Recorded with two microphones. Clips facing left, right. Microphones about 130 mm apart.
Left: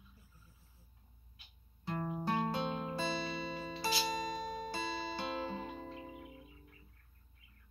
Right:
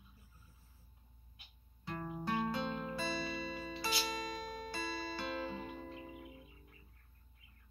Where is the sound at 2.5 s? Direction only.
25° left (ahead or behind).